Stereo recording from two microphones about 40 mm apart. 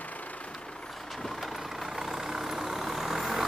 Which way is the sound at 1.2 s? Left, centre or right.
Centre.